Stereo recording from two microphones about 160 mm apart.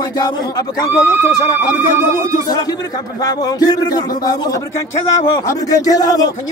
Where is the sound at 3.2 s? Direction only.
25° left (ahead or behind).